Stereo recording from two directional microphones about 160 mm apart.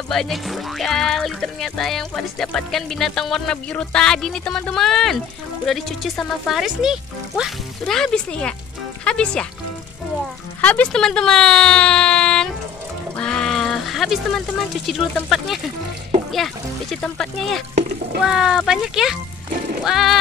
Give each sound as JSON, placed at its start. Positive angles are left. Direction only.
{"t": 0.1, "sound": "speech", "side_deg": 0}
{"t": 10.6, "sound": "speech", "side_deg": 10}
{"t": 13.1, "sound": "a sound", "side_deg": 5}
{"t": 14.9, "sound": "speech", "side_deg": 0}